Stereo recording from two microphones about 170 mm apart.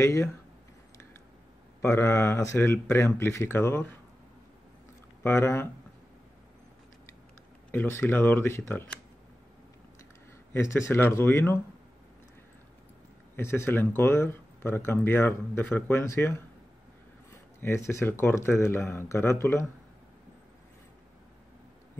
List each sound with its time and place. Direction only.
0.0 s speech: 15° left (ahead or behind)
1.8 s speech: 15° left (ahead or behind)
5.2 s speech: 15° left (ahead or behind)
7.7 s speech: 10° left (ahead or behind)
10.5 s speech: 15° left (ahead or behind)
13.4 s speech: 15° left (ahead or behind)
17.6 s speech: 15° left (ahead or behind)